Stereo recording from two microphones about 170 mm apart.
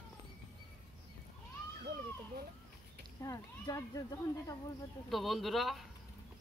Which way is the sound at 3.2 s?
20° left (ahead or behind).